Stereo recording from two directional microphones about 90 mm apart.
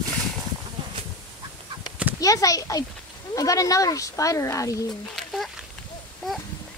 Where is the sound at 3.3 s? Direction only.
40° left (ahead or behind).